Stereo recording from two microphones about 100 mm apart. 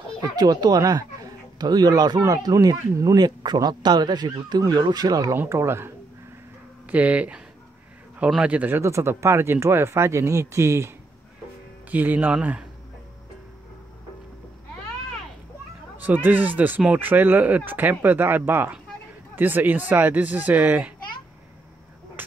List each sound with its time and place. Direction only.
0.2 s speech: 40° right (ahead or behind); by 5.9 s 25° right (ahead or behind)
6.9 s speech: 15° right (ahead or behind)
8.8 s speech: 30° right (ahead or behind)
11.9 s speech: 15° right (ahead or behind)
16.0 s speech: 20° right (ahead or behind)